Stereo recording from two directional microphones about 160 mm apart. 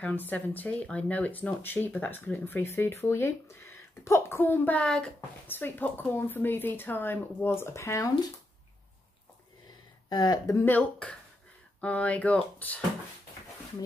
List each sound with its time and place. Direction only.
0.0 s a woman's voice: 10° left (ahead or behind)
10.0 s a woman's voice: 25° left (ahead or behind); by 12.8 s 10° left (ahead or behind)